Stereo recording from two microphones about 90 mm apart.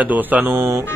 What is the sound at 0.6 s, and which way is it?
Speech, 35° right (ahead or behind).